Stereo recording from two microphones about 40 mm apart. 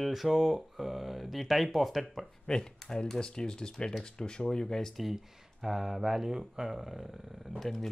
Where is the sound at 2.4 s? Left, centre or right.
Centre.